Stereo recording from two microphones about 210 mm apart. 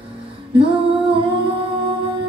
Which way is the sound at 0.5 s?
25° right (ahead or behind).